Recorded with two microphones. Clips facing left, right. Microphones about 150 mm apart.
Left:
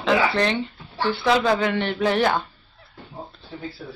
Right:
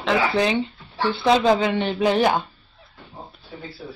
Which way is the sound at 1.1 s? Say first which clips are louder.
Right 3 dB; 20° right (ahead or behind).